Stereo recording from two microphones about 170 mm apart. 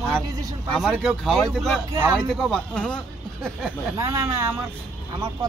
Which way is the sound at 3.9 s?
15° right (ahead or behind).